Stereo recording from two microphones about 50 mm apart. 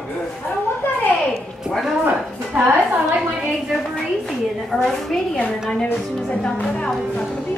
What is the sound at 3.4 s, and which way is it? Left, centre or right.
A woman's voice, centre.